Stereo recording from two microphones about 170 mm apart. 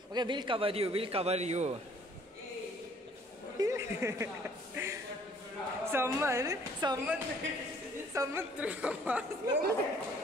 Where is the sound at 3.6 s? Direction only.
15° right (ahead or behind).